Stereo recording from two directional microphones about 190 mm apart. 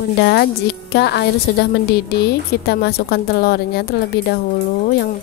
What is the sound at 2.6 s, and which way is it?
A woman's voice, 60° left (ahead or behind).